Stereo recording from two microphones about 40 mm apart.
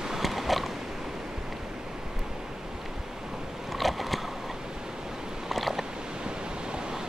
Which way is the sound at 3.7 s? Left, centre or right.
Centre.